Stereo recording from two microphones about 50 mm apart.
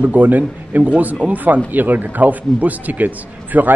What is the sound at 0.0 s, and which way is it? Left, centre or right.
Speech, right.